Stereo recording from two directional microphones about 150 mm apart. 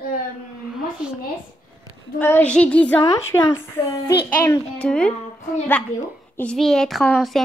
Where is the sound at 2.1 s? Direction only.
10° left (ahead or behind).